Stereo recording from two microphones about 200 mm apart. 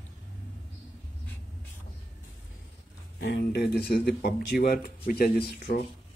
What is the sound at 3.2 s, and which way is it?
Speech, 55° left (ahead or behind).